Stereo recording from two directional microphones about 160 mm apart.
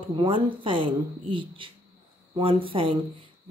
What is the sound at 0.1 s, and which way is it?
A woman's voice, 30° right (ahead or behind).